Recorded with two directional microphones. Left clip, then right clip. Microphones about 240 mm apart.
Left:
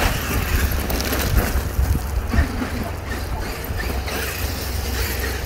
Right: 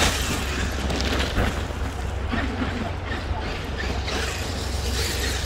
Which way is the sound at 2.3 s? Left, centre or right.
Left.